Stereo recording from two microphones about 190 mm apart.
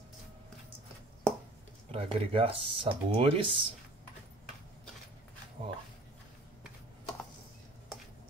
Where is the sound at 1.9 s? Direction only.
30° right (ahead or behind).